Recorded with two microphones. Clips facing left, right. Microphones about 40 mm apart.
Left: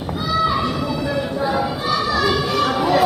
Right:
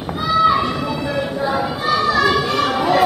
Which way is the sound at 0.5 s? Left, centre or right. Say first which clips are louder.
Right 3 dB; centre.